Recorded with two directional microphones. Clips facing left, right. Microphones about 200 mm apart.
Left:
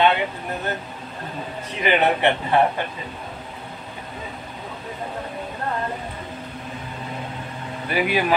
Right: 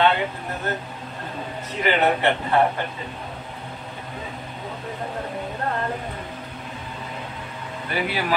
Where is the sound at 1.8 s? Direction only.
20° left (ahead or behind).